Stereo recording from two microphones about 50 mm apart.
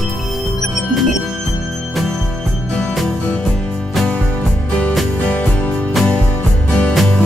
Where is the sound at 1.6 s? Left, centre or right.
Centre.